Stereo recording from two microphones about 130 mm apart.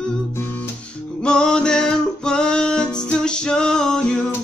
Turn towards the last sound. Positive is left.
turn(degrees=5)  # may be behind; listen again after turning